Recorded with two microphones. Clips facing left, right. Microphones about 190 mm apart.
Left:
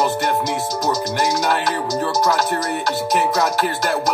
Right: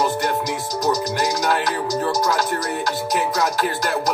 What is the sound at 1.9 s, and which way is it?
Music, 25° left (ahead or behind).